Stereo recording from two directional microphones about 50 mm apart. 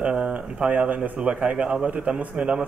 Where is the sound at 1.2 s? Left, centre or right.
Right.